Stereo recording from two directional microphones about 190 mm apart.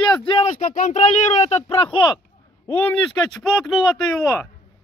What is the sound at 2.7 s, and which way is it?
Speech, 10° left (ahead or behind).